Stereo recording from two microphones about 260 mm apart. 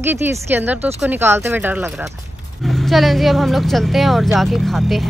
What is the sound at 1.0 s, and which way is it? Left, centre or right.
Speech, centre.